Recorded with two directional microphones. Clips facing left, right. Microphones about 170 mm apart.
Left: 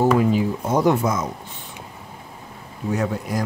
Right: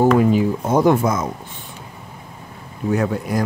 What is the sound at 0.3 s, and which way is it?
Speech, 50° right (ahead or behind).